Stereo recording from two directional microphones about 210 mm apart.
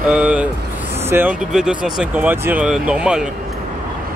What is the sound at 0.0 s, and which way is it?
Speech, 5° right (ahead or behind).